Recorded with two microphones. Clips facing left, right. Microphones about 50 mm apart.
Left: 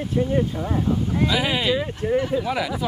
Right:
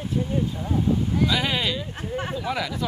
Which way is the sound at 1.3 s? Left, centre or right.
Centre.